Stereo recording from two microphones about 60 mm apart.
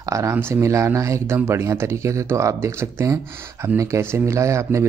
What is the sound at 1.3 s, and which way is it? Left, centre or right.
Speech, right.